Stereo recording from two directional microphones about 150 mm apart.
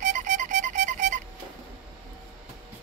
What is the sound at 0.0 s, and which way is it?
Music, 55° right (ahead or behind).